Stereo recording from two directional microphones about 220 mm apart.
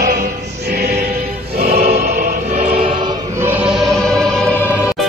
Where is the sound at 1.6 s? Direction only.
40° right (ahead or behind).